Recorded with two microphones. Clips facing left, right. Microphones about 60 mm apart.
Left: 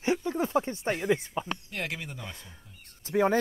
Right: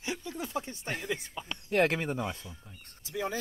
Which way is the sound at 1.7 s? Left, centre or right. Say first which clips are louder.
Right 9 dB; right.